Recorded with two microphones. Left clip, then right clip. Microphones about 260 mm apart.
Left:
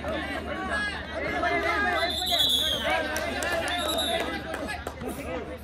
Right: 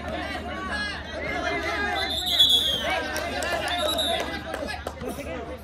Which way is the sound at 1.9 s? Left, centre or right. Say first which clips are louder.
Right 3 dB; left.